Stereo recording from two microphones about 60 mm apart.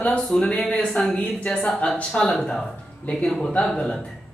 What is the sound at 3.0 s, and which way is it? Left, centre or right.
Speech, left.